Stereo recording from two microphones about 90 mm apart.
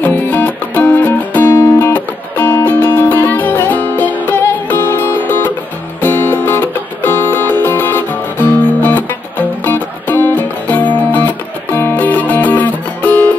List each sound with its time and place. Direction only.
0.0 s music: 20° left (ahead or behind)